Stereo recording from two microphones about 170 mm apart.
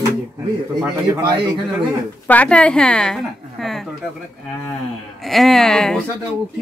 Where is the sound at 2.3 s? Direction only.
5° left (ahead or behind).